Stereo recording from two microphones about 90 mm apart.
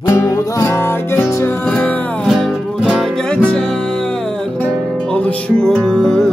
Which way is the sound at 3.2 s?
10° left (ahead or behind).